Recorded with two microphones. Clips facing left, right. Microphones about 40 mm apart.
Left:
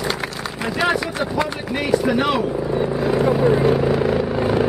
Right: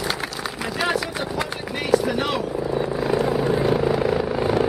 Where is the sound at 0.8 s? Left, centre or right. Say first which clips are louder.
Left 4 dB; centre.